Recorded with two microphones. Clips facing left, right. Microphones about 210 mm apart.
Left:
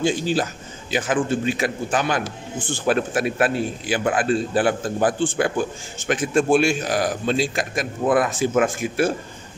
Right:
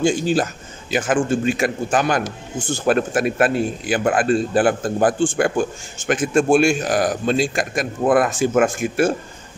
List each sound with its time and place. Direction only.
0.0 s a man's voice: 50° right (ahead or behind)